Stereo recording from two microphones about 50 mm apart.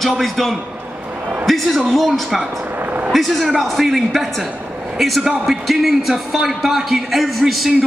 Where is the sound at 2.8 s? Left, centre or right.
Right.